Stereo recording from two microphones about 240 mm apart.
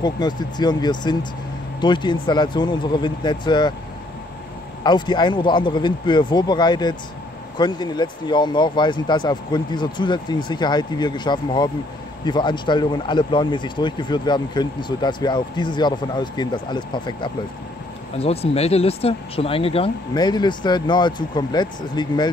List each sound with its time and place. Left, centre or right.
0.0 s speech: centre
4.8 s speech: centre